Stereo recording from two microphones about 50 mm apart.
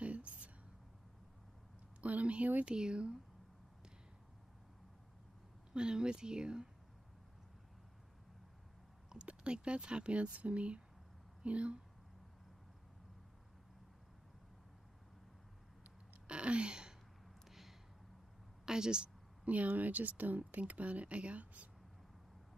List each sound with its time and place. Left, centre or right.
0.0 s a sound: right
2.0 s speech: right
2.7 s speech: centre
5.7 s speech: centre
9.2 s speech: right
15.8 s a sound: right
17.5 s a sound: centre
18.7 s speech: centre
19.4 s speech: right